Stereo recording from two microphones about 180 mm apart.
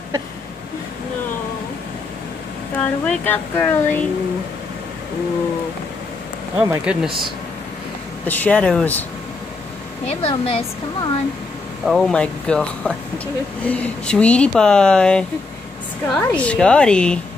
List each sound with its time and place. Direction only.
2.8 s speech: 10° left (ahead or behind)
6.6 s speech: 5° right (ahead or behind)
8.3 s speech: 10° left (ahead or behind)
10.0 s a woman's voice: 35° left (ahead or behind)
11.8 s speech: centre (ahead or behind)